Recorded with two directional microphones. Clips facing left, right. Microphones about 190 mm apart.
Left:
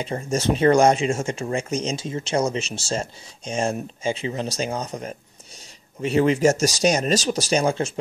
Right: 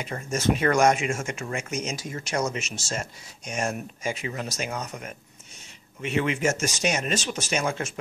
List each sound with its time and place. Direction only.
0.0 s speech: 30° left (ahead or behind)